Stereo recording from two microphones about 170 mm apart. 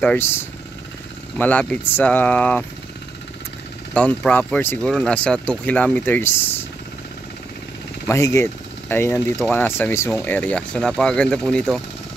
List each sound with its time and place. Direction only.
0.0 s speech: 10° left (ahead or behind)
3.9 s speech: 10° left (ahead or behind)
8.1 s speech: 15° left (ahead or behind)